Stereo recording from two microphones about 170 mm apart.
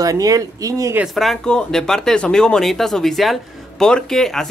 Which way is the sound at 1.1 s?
5° left (ahead or behind).